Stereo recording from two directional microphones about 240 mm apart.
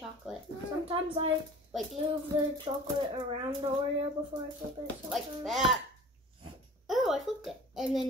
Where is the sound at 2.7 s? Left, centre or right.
Centre.